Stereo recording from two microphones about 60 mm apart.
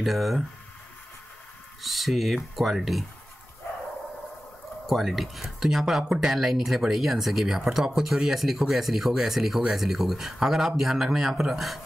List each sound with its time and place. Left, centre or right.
0.0 s speech: centre
1.8 s speech: centre
4.8 s speech: centre